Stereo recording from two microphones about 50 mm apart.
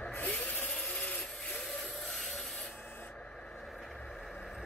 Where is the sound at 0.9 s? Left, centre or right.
Left.